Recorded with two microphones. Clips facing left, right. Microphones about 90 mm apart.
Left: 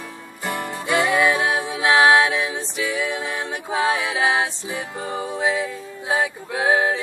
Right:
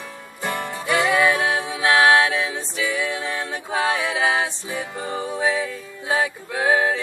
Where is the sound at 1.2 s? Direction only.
15° left (ahead or behind).